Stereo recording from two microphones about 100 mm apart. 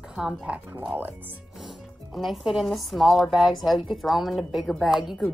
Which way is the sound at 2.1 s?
Centre (ahead or behind).